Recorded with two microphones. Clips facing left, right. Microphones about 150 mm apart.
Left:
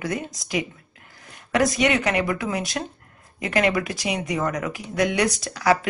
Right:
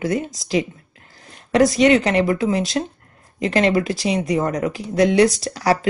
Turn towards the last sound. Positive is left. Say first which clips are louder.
# right 3 dB
turn(degrees=-30)  # may be behind; listen again after turning